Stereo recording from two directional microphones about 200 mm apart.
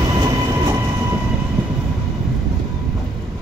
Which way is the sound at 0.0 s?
20° right (ahead or behind).